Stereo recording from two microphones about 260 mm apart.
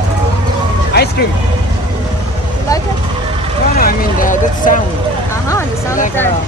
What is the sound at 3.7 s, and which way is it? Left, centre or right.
Vehicle, left.